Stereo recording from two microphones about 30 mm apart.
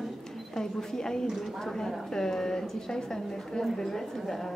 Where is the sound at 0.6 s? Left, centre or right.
Left.